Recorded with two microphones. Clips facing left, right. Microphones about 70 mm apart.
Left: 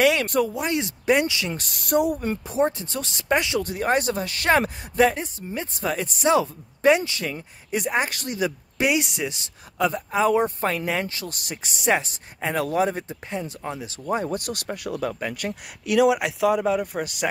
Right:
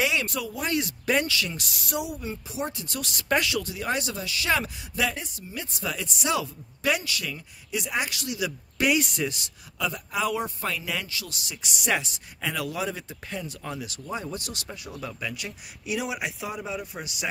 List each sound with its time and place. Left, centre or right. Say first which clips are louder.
0.0 s speech: left 7 dB; left
0.6 s speech: left 3 dB; left
1.5 s speech: left 9 dB; left
3.6 s speech: left 7 dB; left
8.8 s speech: left 1 dB; centre
9.8 s speech: left 7 dB; left
11.7 s speech: left 5 dB; left
13.1 s speech: left 5 dB; left
14.0 s speech: left 10 dB; left
15.8 s a man's voice: left 11 dB; left